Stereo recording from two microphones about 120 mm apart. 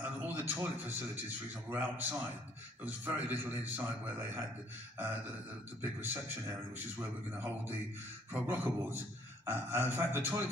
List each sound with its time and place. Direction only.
0.0 s a sound: 15° right (ahead or behind)
1.7 s speech: 15° right (ahead or behind)
5.8 s beatboxing: 20° right (ahead or behind)
6.8 s speech: 15° right (ahead or behind)
8.3 s beatboxing: 20° right (ahead or behind)